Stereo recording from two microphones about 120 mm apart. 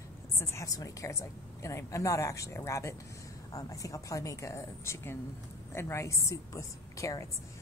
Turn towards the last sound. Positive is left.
turn(degrees=25)  # may be behind; listen again after turning